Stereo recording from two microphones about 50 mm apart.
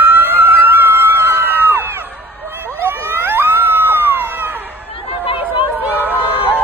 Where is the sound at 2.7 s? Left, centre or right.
Right.